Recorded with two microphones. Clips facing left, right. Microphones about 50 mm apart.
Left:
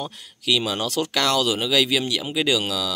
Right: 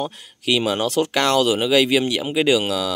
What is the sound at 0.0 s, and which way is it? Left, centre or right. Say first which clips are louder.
Speech: right 4 dB; right.